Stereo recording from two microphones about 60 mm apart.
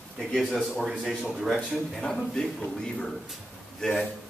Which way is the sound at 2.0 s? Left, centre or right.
Centre.